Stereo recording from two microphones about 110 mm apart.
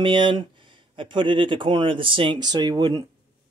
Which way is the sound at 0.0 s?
45° right (ahead or behind).